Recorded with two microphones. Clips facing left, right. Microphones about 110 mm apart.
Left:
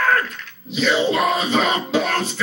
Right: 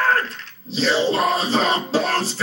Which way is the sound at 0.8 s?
35° right (ahead or behind).